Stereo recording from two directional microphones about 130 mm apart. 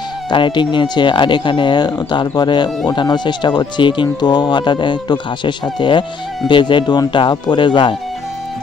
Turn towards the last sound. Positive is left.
turn(degrees=40)  # may be behind; listen again after turning